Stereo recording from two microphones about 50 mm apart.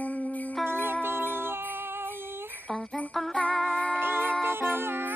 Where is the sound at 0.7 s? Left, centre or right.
Right.